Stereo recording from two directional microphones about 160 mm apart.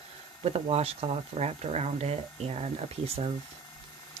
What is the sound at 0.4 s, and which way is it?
Speech, 40° right (ahead or behind).